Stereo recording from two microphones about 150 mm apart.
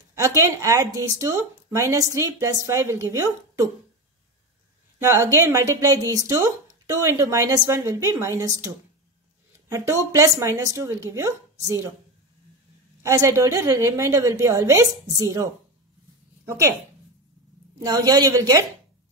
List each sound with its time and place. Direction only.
0.1 s speech: 20° right (ahead or behind)
5.0 s speech: 20° right (ahead or behind)
13.0 s speech: 20° right (ahead or behind)
16.4 s speech: 20° right (ahead or behind)
17.8 s speech: 25° right (ahead or behind)